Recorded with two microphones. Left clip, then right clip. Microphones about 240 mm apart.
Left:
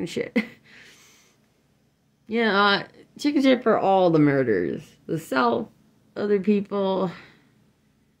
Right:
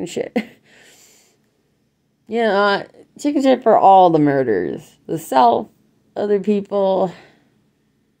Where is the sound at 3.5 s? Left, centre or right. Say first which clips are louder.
Right 13 dB; left.